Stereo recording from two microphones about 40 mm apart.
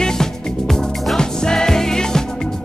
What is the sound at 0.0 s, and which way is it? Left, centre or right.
Music, centre.